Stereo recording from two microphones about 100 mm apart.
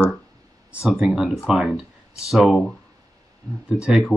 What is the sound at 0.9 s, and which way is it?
Speech, 10° right (ahead or behind).